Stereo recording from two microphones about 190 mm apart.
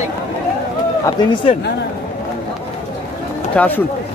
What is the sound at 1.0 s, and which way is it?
Speech, 25° left (ahead or behind).